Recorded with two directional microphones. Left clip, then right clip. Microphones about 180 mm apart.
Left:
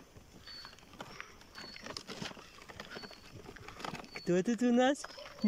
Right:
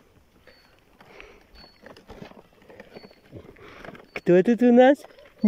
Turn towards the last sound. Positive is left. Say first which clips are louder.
# right 14 dB
turn(degrees=-50)  # may be behind; listen again after turning